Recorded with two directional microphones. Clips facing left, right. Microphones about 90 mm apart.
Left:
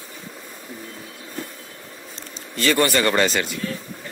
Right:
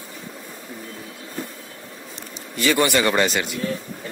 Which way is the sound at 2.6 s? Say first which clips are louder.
Even; 10° right (ahead or behind).